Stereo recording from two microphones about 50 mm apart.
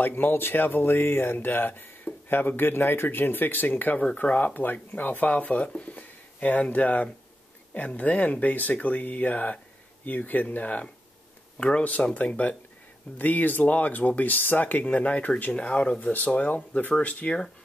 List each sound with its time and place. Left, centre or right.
0.0 s speech: left
5.8 s a sound: left
7.7 s speech: left